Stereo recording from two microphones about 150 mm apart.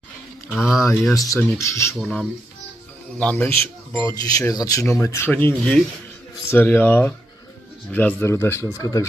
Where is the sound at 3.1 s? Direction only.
10° left (ahead or behind).